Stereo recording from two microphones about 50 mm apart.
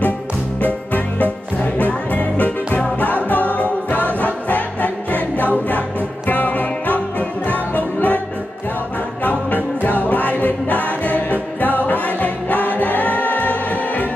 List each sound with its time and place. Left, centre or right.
0.6 s music: left
9.2 s music: left